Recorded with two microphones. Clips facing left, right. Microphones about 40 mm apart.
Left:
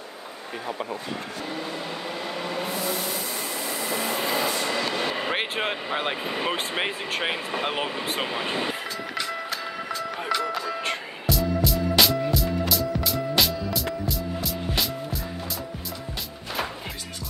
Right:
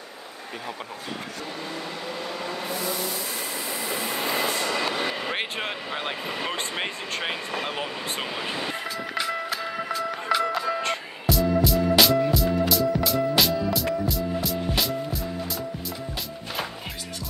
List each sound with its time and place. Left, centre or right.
5.3 s speech: centre
7.6 s speech: left
8.2 s speech: centre
9.1 s music: centre